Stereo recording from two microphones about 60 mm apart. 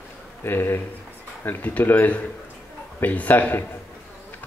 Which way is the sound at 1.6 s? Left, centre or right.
Left.